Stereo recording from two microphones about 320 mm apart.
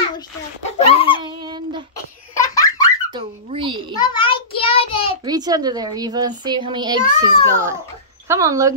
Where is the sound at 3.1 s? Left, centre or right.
Centre.